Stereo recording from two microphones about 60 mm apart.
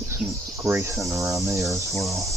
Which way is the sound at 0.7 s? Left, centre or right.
Right.